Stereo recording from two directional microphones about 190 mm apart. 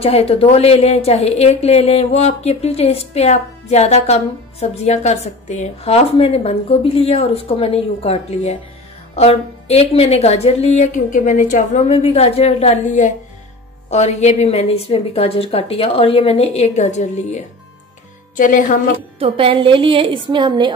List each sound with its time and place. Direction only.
0.0 s a woman's voice: 30° left (ahead or behind)
19.1 s a woman's voice: 30° right (ahead or behind)